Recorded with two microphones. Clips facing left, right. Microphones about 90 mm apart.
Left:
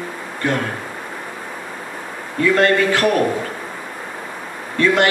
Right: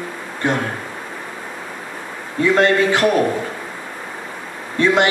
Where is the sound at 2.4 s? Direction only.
20° right (ahead or behind).